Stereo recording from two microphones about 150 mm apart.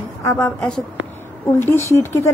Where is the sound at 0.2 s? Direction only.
15° left (ahead or behind).